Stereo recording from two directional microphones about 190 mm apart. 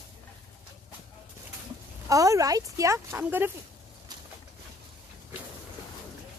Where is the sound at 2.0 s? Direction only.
20° right (ahead or behind).